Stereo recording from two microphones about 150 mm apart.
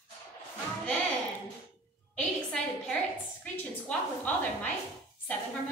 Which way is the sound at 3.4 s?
10° left (ahead or behind).